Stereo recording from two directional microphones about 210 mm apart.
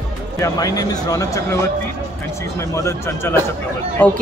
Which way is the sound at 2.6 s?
15° left (ahead or behind).